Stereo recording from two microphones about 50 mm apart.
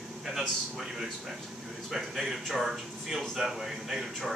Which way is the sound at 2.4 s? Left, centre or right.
Centre.